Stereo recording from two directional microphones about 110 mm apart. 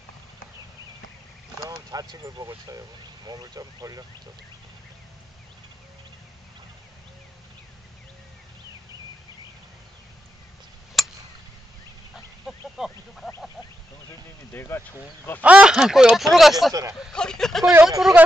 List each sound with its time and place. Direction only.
1.7 s speech: 35° right (ahead or behind)
11.0 s chop: centre (ahead or behind)
12.7 s a sound: 5° right (ahead or behind)
14.5 s vehicle: 20° left (ahead or behind)
15.4 s speech: 10° right (ahead or behind)
17.1 s a sound: 5° left (ahead or behind)
17.8 s speech: 5° right (ahead or behind)